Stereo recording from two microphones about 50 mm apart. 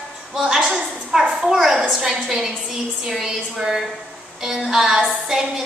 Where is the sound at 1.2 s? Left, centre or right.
Right.